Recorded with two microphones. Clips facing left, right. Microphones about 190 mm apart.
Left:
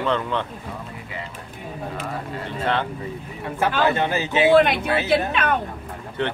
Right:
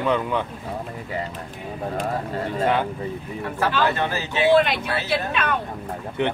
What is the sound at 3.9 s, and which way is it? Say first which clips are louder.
A woman's voice: left 3 dB; 20° left (ahead or behind).